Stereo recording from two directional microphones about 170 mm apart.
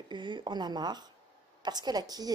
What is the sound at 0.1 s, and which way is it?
Speech, 25° right (ahead or behind).